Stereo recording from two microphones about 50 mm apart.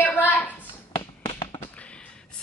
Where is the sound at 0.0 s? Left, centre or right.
Left.